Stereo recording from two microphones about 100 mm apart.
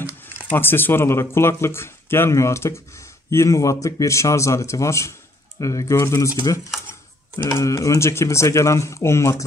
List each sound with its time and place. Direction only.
0.5 s a man's voice: 20° left (ahead or behind)
6.3 s a man's voice: 40° left (ahead or behind)